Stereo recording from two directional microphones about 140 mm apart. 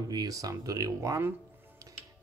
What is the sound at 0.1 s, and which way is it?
Speech, 25° right (ahead or behind).